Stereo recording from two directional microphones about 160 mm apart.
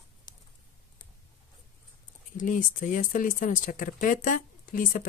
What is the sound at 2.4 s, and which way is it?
Speech, 55° left (ahead or behind).